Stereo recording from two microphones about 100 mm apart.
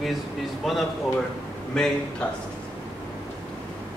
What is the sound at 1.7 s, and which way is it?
Speech, 5° left (ahead or behind).